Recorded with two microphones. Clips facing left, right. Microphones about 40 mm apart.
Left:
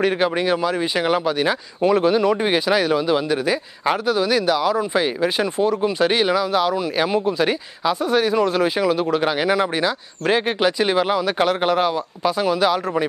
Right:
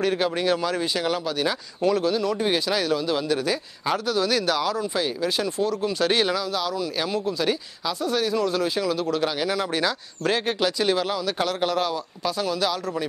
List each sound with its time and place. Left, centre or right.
0.0 s speech: left
4.7 s speech: left
6.5 s speech: left